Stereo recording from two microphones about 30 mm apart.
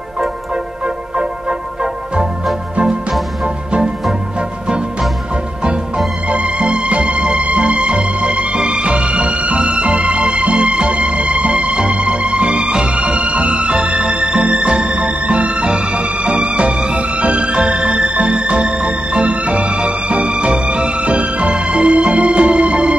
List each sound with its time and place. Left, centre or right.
6.2 s music: right
9.6 s music: right